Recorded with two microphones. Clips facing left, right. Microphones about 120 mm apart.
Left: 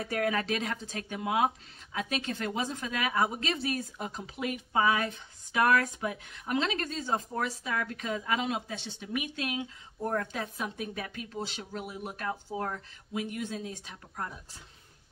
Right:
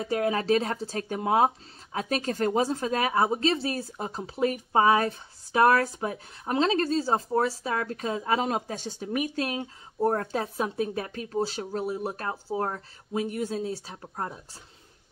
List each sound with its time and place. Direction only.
0.0 s speech: 25° right (ahead or behind)